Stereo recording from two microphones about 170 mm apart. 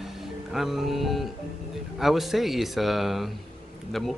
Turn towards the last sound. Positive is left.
turn(degrees=0)  # may be behind; listen again after turning